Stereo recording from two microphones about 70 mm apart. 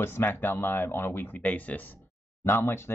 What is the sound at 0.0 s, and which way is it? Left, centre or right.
Speech, left.